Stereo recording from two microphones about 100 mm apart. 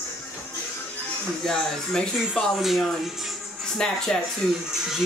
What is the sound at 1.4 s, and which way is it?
Speech, 5° left (ahead or behind).